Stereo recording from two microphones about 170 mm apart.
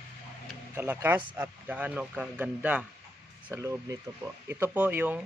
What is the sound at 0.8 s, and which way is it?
A man's voice, 10° right (ahead or behind).